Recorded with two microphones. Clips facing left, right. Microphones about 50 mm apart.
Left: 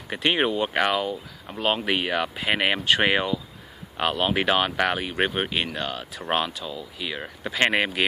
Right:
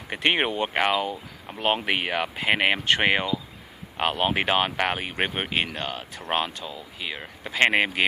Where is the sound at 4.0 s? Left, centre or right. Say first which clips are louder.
Even; centre.